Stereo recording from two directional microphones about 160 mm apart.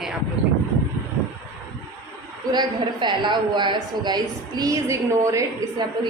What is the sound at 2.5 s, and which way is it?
A woman's voice, 30° right (ahead or behind).